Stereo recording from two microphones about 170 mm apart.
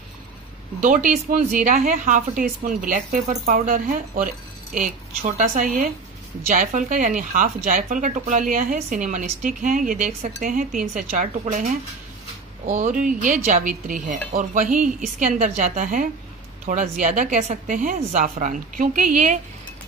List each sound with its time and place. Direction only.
0.7 s speech: 50° right (ahead or behind)
5.4 s speech: 50° right (ahead or behind)
12.6 s speech: 45° right (ahead or behind)